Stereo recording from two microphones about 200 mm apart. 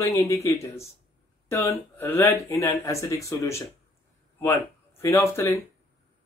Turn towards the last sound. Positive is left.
turn(degrees=10)  # may be behind; listen again after turning